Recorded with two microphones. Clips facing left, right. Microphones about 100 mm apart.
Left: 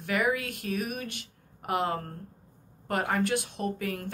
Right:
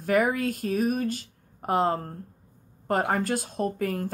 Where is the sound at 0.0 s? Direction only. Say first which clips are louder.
Right 5 dB; 40° right (ahead or behind).